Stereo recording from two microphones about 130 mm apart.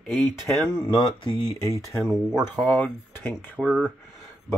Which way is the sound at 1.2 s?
30° left (ahead or behind).